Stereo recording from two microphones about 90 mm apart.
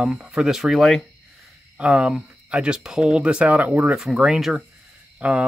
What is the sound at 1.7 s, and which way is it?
Speech, 10° right (ahead or behind).